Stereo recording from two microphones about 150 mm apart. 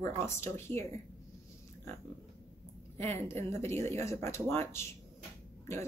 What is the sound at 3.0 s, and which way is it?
A woman's voice, 15° left (ahead or behind).